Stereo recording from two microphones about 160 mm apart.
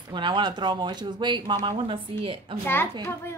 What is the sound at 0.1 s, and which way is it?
Speech, 30° right (ahead or behind).